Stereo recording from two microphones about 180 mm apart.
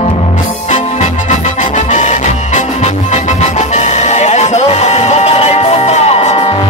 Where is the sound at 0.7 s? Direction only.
40° left (ahead or behind).